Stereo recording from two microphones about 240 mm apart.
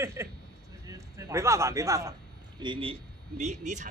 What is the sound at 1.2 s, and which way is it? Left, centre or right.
A man's voice, centre.